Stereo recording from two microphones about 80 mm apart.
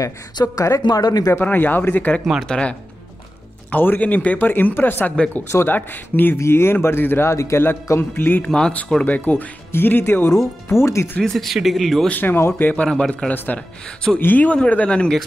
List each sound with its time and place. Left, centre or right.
0.6 s speech: left
0.8 s speech: left
1.3 s speech: left
3.7 s speech: left
8.5 s speech: centre; by 11.1 s left
11.1 s speech: centre
12.1 s speech: left; by 13.3 s centre
14.2 s speech: centre